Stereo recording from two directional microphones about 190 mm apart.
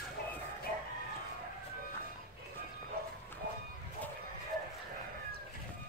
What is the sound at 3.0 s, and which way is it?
Dog, 55° right (ahead or behind).